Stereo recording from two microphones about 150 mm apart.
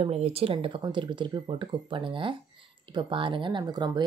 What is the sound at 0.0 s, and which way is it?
Speech, 40° right (ahead or behind).